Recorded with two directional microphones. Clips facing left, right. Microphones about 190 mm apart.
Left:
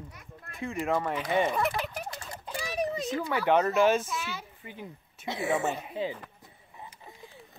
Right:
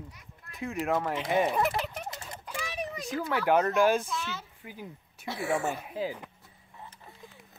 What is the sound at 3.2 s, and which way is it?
Speech, 5° right (ahead or behind).